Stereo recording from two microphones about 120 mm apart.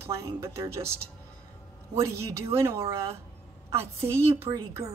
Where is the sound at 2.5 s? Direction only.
20° right (ahead or behind).